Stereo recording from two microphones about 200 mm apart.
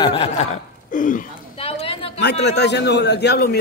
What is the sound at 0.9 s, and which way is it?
Chuckle, 40° left (ahead or behind).